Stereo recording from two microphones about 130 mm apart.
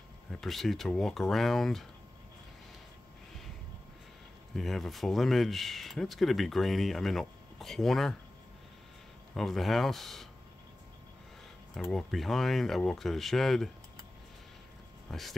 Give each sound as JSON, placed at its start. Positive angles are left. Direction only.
{"t": 0.3, "sound": "speech", "side_deg": 0}
{"t": 4.6, "sound": "speech", "side_deg": 0}
{"t": 9.3, "sound": "speech", "side_deg": 0}
{"t": 11.7, "sound": "speech", "side_deg": 0}
{"t": 15.0, "sound": "speech", "side_deg": 0}